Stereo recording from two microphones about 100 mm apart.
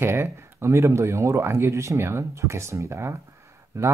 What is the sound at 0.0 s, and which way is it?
Speech, 25° right (ahead or behind).